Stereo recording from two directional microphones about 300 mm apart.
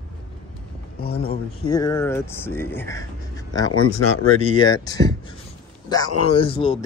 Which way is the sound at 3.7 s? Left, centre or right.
Left.